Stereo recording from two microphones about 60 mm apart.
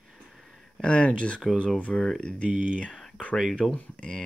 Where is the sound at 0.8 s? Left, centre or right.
Centre.